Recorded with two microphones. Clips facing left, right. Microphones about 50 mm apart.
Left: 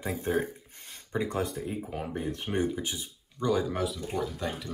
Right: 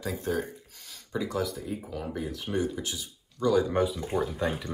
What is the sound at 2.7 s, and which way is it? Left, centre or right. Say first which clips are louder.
Speech: left 1 dB; left.